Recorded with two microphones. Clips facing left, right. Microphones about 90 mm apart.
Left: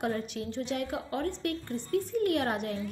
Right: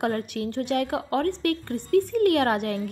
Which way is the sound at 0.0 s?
70° right (ahead or behind).